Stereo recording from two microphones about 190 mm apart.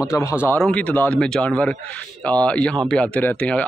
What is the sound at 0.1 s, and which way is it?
Speech, 15° left (ahead or behind).